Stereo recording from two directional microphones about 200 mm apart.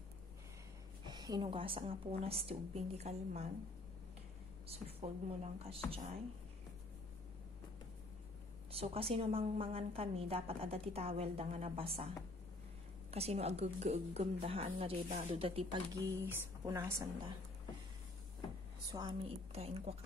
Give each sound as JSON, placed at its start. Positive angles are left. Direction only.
{"t": 1.0, "sound": "a woman's voice", "side_deg": -20}
{"t": 4.6, "sound": "a woman's voice", "side_deg": -30}
{"t": 8.7, "sound": "a woman's voice", "side_deg": -30}
{"t": 13.1, "sound": "a woman's voice", "side_deg": -30}
{"t": 18.9, "sound": "a woman's voice", "side_deg": -20}